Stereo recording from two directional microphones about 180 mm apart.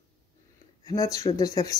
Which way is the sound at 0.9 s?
20° left (ahead or behind).